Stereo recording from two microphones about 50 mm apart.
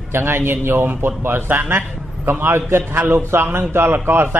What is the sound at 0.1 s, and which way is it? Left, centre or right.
A man's voice, right.